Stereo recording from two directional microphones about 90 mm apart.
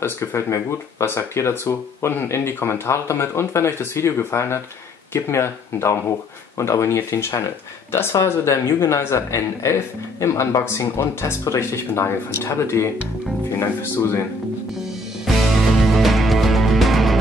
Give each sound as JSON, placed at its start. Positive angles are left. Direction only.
{"t": 0.0, "sound": "speech", "side_deg": 30}
{"t": 15.2, "sound": "music", "side_deg": 0}